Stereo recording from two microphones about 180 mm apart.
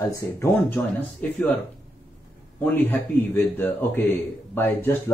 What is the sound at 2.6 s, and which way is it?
Speech, 10° left (ahead or behind).